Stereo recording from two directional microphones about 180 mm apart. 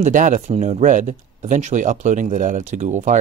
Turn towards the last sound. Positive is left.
turn(degrees=-45)  # may be behind; listen again after turning